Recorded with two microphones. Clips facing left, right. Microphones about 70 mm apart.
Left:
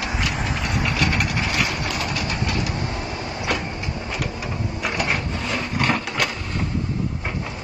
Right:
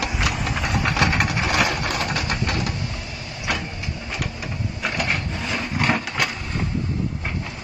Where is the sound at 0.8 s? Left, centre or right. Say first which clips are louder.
Right 2 dB; right.